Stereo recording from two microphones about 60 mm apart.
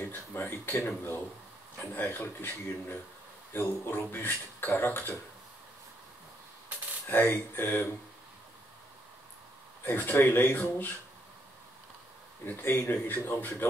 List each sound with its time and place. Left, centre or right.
0.0 s speech: left
7.1 s speech: left
9.8 s speech: left
12.4 s speech: left